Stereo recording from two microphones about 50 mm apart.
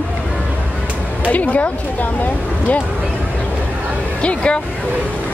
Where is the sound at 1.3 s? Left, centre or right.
Left.